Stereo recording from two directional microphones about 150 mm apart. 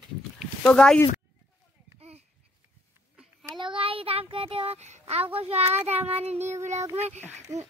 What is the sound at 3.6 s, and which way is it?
Child singing, 35° right (ahead or behind).